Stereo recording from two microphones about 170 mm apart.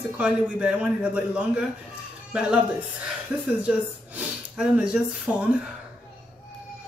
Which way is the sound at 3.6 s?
5° right (ahead or behind).